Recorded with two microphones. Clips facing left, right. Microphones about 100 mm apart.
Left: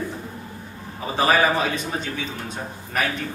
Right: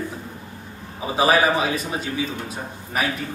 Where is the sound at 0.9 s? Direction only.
5° right (ahead or behind).